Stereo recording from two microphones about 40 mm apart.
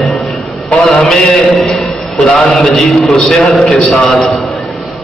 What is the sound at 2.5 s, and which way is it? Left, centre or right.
A man's voice, centre.